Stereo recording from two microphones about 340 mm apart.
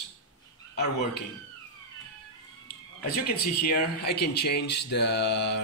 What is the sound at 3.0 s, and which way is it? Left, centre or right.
Speech, left.